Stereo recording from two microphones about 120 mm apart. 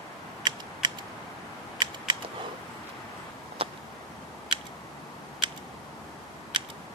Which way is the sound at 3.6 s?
50° right (ahead or behind).